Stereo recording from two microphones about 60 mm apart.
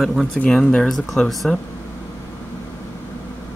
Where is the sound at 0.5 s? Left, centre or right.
Centre.